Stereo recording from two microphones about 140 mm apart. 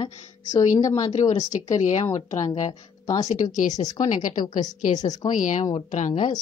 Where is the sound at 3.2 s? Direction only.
60° left (ahead or behind).